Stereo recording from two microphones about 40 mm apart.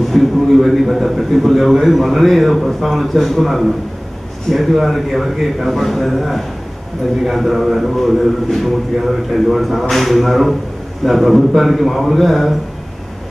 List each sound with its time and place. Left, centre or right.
0.1 s a man's voice: centre